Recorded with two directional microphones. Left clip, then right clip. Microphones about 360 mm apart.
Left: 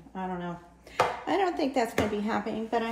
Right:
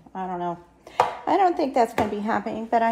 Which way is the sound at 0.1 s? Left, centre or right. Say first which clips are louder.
Right 7 dB; centre.